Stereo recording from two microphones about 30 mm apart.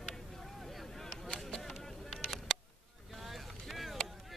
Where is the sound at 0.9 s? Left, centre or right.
Centre.